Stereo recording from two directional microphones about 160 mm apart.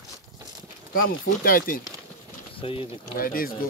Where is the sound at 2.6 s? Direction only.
35° left (ahead or behind).